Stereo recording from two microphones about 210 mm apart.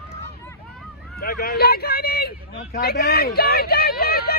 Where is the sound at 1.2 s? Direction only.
45° left (ahead or behind).